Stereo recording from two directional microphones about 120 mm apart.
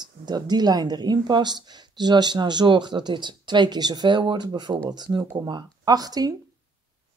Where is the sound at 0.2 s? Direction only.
35° right (ahead or behind).